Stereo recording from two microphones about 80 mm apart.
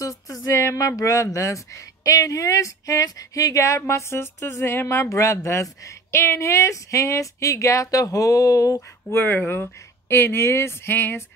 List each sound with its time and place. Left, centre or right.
0.0 s speech: left
9.1 s speech: left